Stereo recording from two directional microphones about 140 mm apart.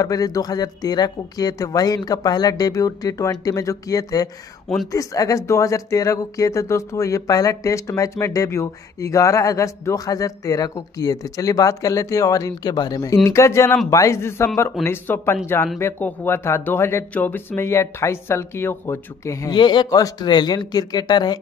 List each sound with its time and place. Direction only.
0.0 s speech: 25° left (ahead or behind)
19.5 s speech: 35° left (ahead or behind)